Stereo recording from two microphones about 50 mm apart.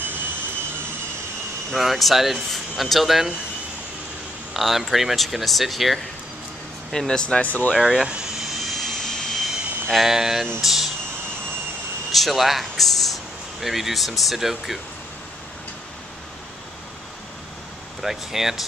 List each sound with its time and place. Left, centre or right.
1.7 s speech: centre
4.6 s speech: centre
6.9 s speech: centre
7.4 s speech: left
7.8 s speech: centre
8.5 s jet engine: centre
9.8 s speech: centre
12.1 s speech: centre
18.0 s speech: centre